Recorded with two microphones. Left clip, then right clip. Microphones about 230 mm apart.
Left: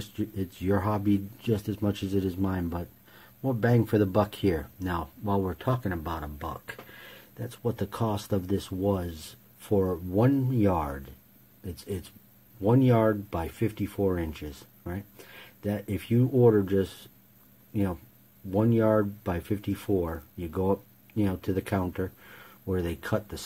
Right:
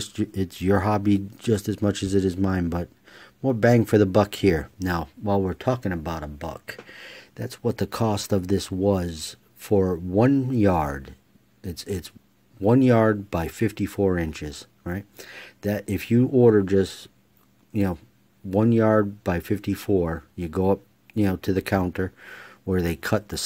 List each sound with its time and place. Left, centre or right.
0.0 s speech: right
18.5 s speech: right